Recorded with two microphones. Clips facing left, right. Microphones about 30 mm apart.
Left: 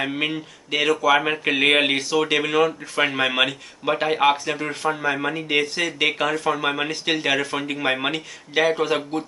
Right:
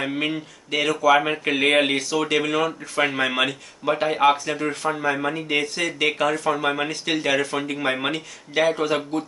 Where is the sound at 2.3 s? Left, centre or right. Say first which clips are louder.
Left 1 dB; centre.